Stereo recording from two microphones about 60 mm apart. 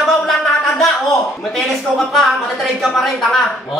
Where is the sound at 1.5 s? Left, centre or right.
Centre.